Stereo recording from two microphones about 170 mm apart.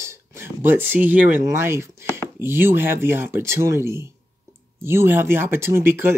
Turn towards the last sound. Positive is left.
turn(degrees=-15)  # may be behind; listen again after turning